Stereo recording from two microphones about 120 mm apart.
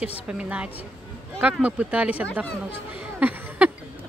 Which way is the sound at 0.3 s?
10° right (ahead or behind).